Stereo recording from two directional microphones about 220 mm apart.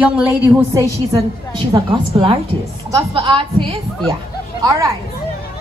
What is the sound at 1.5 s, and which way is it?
A woman's voice, 25° right (ahead or behind).